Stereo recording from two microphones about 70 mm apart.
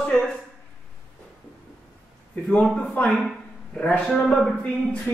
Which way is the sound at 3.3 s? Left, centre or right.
Centre.